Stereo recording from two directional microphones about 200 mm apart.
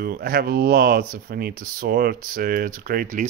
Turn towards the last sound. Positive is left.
turn(degrees=-45)  # may be behind; listen again after turning